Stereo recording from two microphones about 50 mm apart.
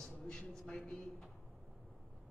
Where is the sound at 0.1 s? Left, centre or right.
Centre.